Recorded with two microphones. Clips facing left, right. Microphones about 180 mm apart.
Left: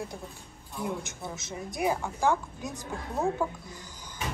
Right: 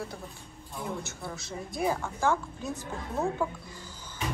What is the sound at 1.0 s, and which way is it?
Speech, 20° left (ahead or behind).